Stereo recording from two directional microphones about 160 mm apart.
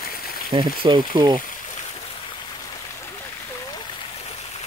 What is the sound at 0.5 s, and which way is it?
Speech, 30° right (ahead or behind).